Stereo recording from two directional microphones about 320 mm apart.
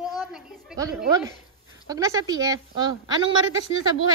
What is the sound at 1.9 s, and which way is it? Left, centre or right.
Speech, centre.